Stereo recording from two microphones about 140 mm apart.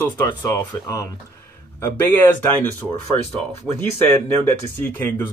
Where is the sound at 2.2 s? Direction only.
15° left (ahead or behind).